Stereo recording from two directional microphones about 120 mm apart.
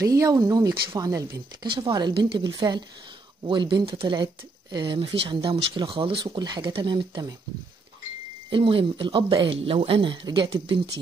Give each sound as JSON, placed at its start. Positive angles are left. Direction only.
{"t": 0.0, "sound": "speech", "side_deg": -30}
{"t": 8.5, "sound": "speech", "side_deg": -45}
{"t": 9.6, "sound": "speech", "side_deg": -55}
{"t": 10.4, "sound": "speech", "side_deg": -50}